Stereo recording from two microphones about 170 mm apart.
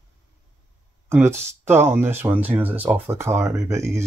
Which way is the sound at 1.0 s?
15° right (ahead or behind).